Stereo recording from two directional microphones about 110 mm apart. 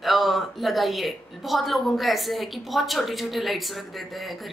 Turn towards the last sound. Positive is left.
turn(degrees=0)  # may be behind; listen again after turning